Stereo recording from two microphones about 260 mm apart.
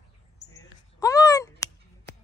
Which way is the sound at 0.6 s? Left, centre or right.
Centre.